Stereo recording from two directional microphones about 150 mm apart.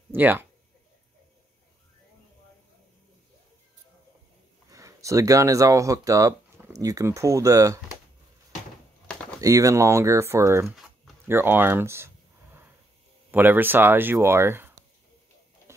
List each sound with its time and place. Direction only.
0.1 s speech: 15° right (ahead or behind)
4.6 s speech: 20° right (ahead or behind)
9.0 s a sound: 5° left (ahead or behind)
9.4 s speech: 20° right (ahead or behind)
13.3 s speech: 15° right (ahead or behind)